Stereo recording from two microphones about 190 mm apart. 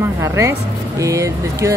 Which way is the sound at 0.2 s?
15° right (ahead or behind).